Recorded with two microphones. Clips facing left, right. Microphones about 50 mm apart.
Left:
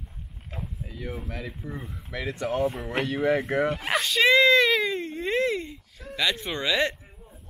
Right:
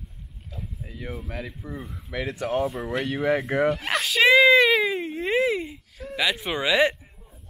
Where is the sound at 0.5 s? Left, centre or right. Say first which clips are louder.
Left 2 dB; left.